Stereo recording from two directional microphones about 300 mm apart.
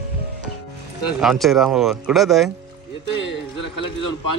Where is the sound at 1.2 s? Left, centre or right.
Centre.